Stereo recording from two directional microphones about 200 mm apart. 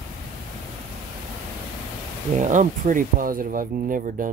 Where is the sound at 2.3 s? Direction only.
35° right (ahead or behind).